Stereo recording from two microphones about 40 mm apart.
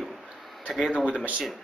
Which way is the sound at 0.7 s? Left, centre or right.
Centre.